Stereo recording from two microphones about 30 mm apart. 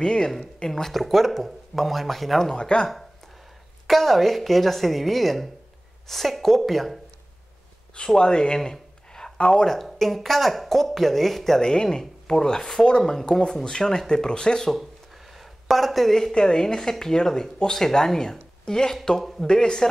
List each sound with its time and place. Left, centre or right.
0.0 s speech: left
0.7 s a woman's voice: centre
2.5 s speech: left
3.8 s a woman's voice: centre
8.2 s speech: left
9.1 s a sound: centre
9.7 s speech: centre
11.6 s speech: left
13.2 s speech: left
15.3 s a sound: centre
16.3 s speech: left
19.4 s speech: left